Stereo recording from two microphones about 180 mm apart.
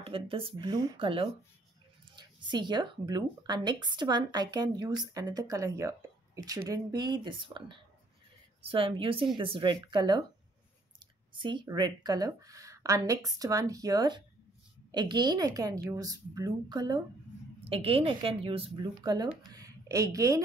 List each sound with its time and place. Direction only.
0.0 s speech: 30° right (ahead or behind)
11.3 s speech: 25° right (ahead or behind)